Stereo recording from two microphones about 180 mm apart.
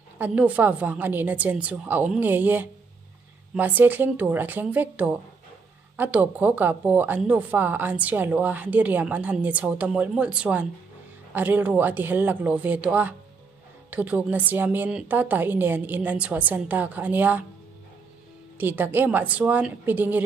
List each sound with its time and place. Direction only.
0.2 s speech: 10° right (ahead or behind)
18.6 s speech: 10° right (ahead or behind)